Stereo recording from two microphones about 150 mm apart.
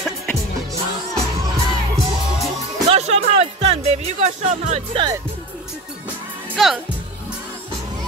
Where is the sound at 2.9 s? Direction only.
45° right (ahead or behind).